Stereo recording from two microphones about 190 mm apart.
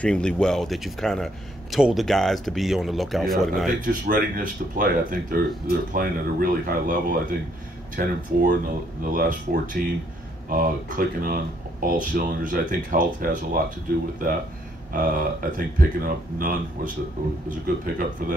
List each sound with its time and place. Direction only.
0.0 s speech: 5° left (ahead or behind)
3.8 s speech: 45° right (ahead or behind)
15.0 s speech: 45° right (ahead or behind)